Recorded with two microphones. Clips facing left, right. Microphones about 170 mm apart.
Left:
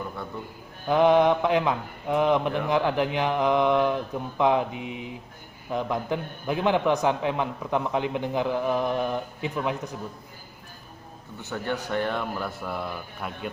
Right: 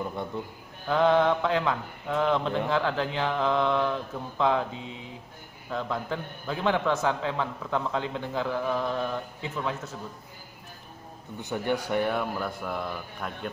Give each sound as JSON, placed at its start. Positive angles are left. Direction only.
{"t": 0.8, "sound": "speech", "side_deg": 15}
{"t": 11.3, "sound": "speech", "side_deg": -15}